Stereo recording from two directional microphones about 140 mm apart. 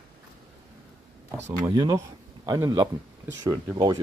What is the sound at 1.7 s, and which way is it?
A man's voice, 30° right (ahead or behind).